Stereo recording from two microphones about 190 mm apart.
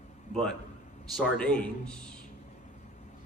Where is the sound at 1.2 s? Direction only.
5° left (ahead or behind).